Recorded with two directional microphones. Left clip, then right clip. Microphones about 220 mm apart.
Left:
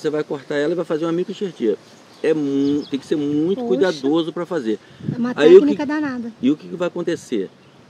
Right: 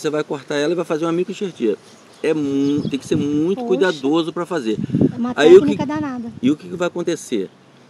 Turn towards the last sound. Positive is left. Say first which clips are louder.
# right 1 dB
turn(degrees=-30)  # may be behind; listen again after turning